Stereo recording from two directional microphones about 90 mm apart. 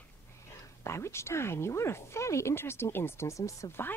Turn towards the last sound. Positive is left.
turn(degrees=35)  # may be behind; listen again after turning